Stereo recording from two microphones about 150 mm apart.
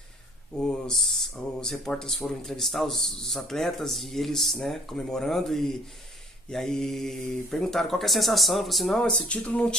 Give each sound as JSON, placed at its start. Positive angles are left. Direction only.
{"t": 0.6, "sound": "speech", "side_deg": 5}